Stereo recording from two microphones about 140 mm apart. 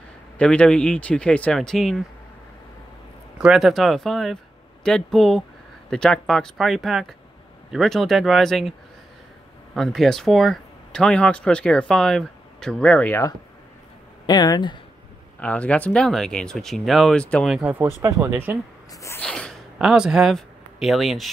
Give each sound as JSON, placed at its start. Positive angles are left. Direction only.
{"t": 0.4, "sound": "speech", "side_deg": 5}
{"t": 3.3, "sound": "speech", "side_deg": -5}
{"t": 9.8, "sound": "speech", "side_deg": 5}
{"t": 14.2, "sound": "speech", "side_deg": 30}
{"t": 15.4, "sound": "speech", "side_deg": 10}
{"t": 18.0, "sound": "speech", "side_deg": -20}
{"t": 18.9, "sound": "sneeze", "side_deg": 20}
{"t": 19.2, "sound": "sneeze", "side_deg": 5}
{"t": 19.8, "sound": "a man's voice", "side_deg": -5}